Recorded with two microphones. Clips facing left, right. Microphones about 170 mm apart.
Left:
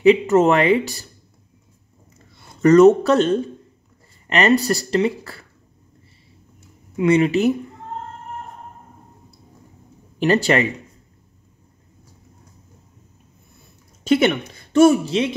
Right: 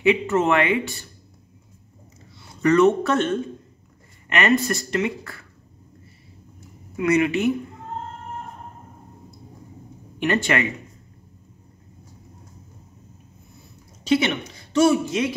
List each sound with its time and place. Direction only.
0.0 s speech: 40° left (ahead or behind)
2.6 s speech: 40° left (ahead or behind)
7.0 s speech: 30° left (ahead or behind)
10.1 s speech: 35° left (ahead or behind)
14.0 s a woman's voice: 50° left (ahead or behind)
15.0 s a man's voice: 30° left (ahead or behind)